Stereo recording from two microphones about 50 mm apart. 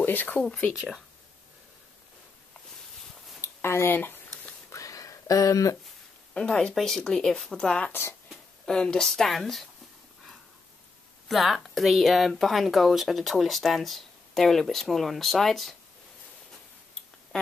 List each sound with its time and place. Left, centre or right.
0.0 s speech: left
0.4 s speech: left
3.3 s a sound: left
4.7 s a sound: left
6.3 s speech: centre
6.7 s speech: centre
7.9 s speech: left
8.6 s speech: centre
11.2 s speech: centre